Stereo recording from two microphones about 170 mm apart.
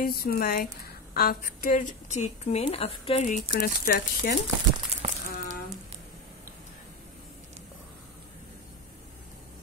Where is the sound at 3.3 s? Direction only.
60° left (ahead or behind).